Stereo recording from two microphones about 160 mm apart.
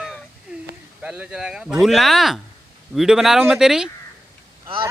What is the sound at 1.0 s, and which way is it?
Speech, 5° right (ahead or behind).